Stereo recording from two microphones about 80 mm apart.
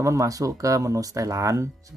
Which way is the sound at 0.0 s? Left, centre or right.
Right.